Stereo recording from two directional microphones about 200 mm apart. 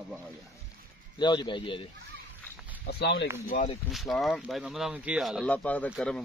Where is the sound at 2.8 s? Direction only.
55° left (ahead or behind).